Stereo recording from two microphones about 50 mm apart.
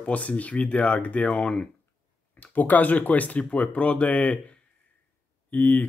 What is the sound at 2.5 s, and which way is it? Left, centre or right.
Speech, left.